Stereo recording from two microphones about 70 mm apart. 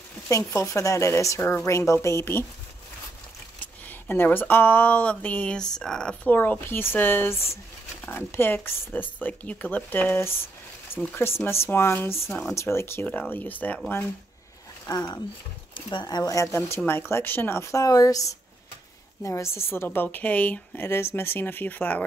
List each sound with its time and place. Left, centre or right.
0.4 s speech: left
3.8 s a woman's voice: left
5.8 s speech: centre
6.2 s a woman's voice: left
12.3 s speech: centre
12.5 s speech: left
13.0 s a woman's voice: left
14.9 s speech: left
16.0 s speech: left
16.5 s speech: left
19.2 s a woman's voice: left